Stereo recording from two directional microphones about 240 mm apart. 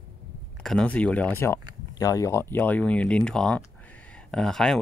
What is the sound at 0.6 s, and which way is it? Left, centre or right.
Speech, centre.